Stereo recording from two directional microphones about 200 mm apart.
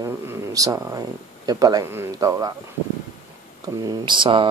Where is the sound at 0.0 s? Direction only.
15° right (ahead or behind).